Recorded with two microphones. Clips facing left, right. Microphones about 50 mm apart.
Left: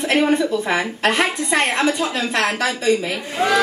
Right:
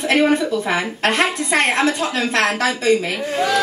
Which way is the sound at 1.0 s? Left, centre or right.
Right.